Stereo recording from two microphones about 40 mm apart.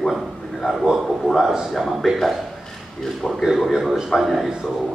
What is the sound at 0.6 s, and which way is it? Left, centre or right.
A man's voice, centre.